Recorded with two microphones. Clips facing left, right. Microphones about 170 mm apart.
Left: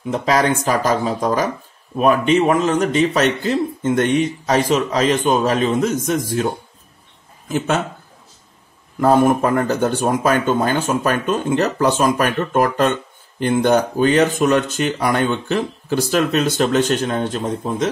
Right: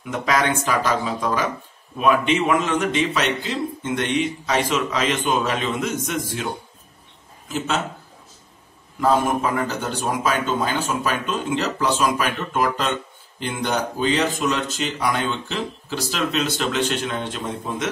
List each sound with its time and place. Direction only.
0.0 s a man's voice: 30° left (ahead or behind)
7.4 s speech: 55° left (ahead or behind)
9.0 s speech: 50° left (ahead or behind)